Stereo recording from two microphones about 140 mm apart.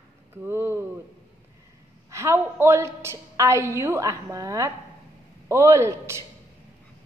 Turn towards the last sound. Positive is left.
turn(degrees=-20)  # may be behind; listen again after turning